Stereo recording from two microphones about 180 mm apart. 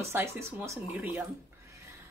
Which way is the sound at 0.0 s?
15° right (ahead or behind).